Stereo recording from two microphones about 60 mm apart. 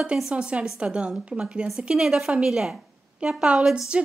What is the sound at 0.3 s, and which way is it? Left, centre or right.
A woman's voice, centre.